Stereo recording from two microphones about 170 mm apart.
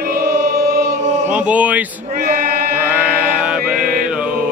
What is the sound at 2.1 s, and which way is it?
Male singing, 55° right (ahead or behind).